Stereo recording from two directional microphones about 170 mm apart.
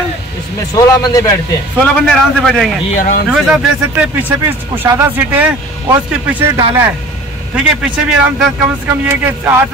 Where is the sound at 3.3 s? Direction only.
5° right (ahead or behind).